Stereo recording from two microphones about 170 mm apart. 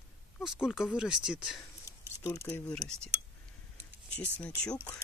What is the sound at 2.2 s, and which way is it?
Speech, 20° left (ahead or behind).